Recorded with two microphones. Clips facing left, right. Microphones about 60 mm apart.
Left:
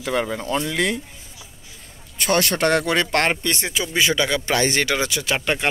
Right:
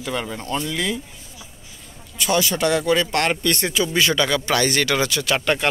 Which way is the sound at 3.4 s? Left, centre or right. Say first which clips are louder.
Right 3 dB; centre.